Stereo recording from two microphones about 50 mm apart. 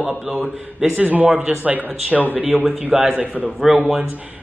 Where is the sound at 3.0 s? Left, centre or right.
Right.